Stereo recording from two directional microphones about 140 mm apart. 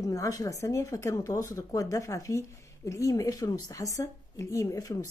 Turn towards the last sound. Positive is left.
turn(degrees=25)  # may be behind; listen again after turning